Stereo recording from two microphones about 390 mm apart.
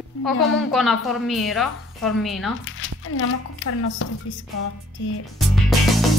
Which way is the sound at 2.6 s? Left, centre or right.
Left.